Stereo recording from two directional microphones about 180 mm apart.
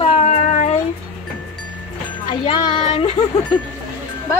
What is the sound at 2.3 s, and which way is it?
Female singing, 25° left (ahead or behind).